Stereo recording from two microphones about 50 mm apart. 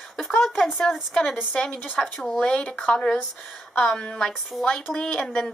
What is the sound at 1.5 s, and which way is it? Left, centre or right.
Speech, left.